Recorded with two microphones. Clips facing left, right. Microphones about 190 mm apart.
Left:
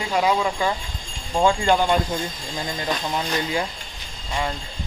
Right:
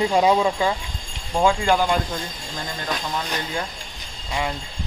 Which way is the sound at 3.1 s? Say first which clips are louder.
Left 3 dB; 10° left (ahead or behind).